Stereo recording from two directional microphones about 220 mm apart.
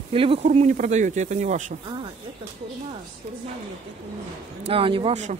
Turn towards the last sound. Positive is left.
turn(degrees=-30)  # may be behind; listen again after turning